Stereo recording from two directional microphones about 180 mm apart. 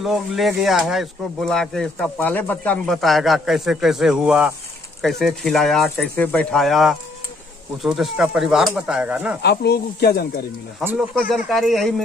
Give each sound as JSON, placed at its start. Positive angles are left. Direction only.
{"t": 0.0, "sound": "speech", "side_deg": 0}
{"t": 9.4, "sound": "speech", "side_deg": 65}
{"t": 10.8, "sound": "speech", "side_deg": -10}
{"t": 11.5, "sound": "speech", "side_deg": 0}